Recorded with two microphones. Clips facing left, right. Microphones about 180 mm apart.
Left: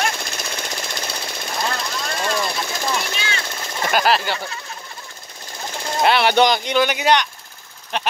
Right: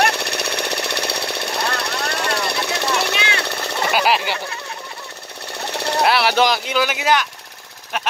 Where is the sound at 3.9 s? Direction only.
10° right (ahead or behind).